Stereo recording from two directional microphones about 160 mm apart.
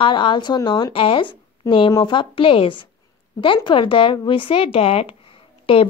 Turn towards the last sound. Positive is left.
turn(degrees=35)  # may be behind; listen again after turning